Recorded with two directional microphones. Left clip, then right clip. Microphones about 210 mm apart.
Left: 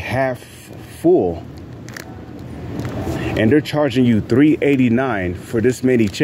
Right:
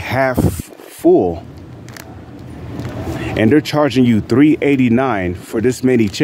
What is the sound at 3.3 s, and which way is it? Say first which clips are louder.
Speech: right 3 dB; 25° right (ahead or behind).